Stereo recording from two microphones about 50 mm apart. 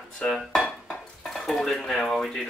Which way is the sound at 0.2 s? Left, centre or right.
Left.